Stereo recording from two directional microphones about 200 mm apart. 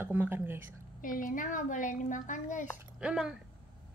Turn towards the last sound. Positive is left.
turn(degrees=-5)  # may be behind; listen again after turning